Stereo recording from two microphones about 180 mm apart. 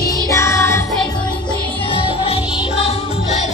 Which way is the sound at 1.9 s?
30° left (ahead or behind).